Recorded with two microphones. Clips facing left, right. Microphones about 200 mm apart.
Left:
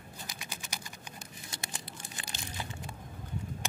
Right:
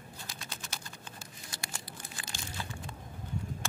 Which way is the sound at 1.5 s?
20° left (ahead or behind).